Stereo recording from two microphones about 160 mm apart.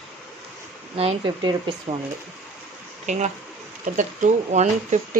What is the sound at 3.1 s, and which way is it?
Speech, 45° right (ahead or behind).